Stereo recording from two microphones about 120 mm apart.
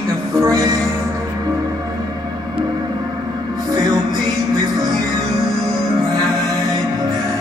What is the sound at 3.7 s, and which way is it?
Music, 35° right (ahead or behind).